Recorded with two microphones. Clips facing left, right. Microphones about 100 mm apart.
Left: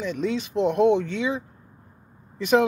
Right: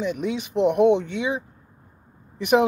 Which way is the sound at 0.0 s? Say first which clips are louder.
Even; 15° right (ahead or behind).